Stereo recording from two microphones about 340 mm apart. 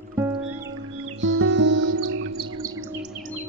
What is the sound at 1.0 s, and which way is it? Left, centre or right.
Music, right.